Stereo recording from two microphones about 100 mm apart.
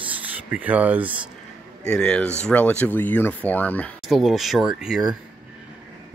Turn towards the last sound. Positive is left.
turn(degrees=-5)  # may be behind; listen again after turning